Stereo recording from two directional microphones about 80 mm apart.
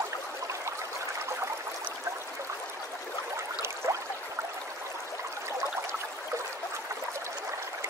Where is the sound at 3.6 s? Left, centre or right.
Right.